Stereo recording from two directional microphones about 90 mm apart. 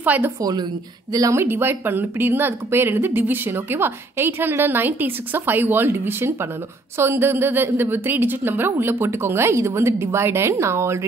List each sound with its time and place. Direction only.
0.0 s a woman's voice: 20° right (ahead or behind)
0.4 s a woman's voice: 45° right (ahead or behind)
1.4 s a woman's voice: 25° right (ahead or behind)